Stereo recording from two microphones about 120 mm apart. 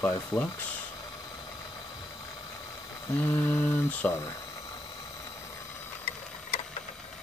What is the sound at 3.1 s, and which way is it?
Mantra, 15° left (ahead or behind).